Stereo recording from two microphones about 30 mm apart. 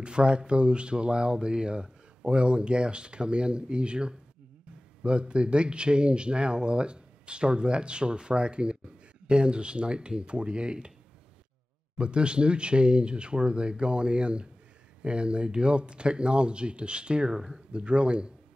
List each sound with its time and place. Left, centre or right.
0.0 s speech: right
12.0 s speech: right
17.2 s speech: centre
17.7 s speech: right